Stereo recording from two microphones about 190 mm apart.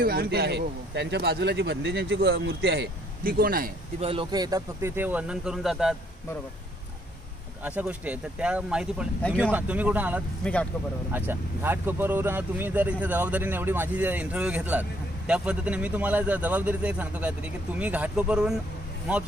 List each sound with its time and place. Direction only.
0.0 s speech: 50° right (ahead or behind)
4.0 s speech: 25° right (ahead or behind); by 5.9 s centre (ahead or behind)
7.6 s speech: 10° right (ahead or behind)
10.4 s speech: 5° left (ahead or behind)
11.1 s speech: 10° right (ahead or behind)